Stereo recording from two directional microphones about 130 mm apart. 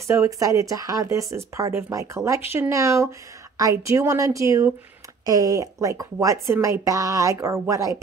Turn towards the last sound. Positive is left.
turn(degrees=-25)  # may be behind; listen again after turning